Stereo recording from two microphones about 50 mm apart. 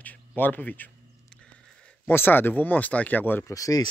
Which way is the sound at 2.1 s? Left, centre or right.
Left.